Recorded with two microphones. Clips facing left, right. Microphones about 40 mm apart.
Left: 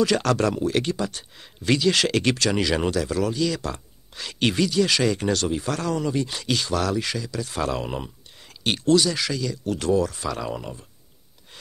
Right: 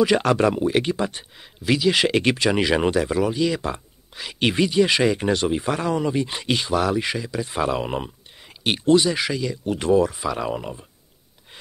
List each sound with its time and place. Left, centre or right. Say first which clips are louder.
0.0 s speech: right 3 dB; centre
1.3 s speech: left 2 dB; centre